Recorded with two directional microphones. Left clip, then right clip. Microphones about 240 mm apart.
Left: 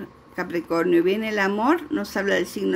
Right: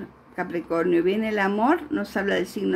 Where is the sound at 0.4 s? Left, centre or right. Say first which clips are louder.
Left 1 dB; centre.